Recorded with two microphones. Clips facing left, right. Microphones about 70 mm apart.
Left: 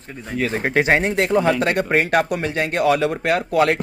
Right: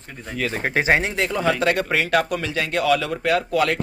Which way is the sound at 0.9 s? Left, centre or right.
Left.